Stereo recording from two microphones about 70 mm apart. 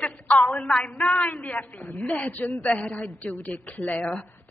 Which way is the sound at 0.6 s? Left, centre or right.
Centre.